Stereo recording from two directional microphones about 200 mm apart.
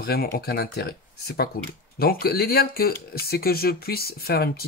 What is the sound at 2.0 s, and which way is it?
Speech, 50° left (ahead or behind).